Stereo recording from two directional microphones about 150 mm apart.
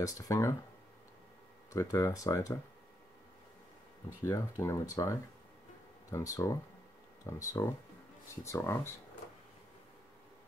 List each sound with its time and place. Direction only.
0.0 s speech: 20° left (ahead or behind)
1.7 s speech: 20° left (ahead or behind)
4.2 s speech: 20° left (ahead or behind)